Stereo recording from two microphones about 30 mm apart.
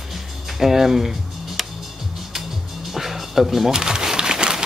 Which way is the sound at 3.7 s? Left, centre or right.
Right.